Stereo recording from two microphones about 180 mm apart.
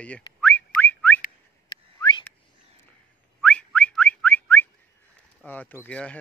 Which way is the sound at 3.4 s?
5° left (ahead or behind).